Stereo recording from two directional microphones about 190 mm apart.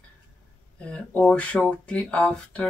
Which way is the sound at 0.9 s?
5° left (ahead or behind).